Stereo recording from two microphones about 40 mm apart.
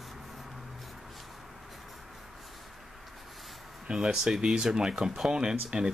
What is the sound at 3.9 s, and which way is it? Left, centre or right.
Speech, right.